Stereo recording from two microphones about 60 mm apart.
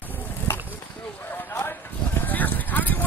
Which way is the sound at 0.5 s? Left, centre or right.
Left.